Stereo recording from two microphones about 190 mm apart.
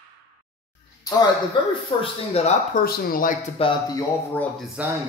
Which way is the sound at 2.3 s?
35° left (ahead or behind).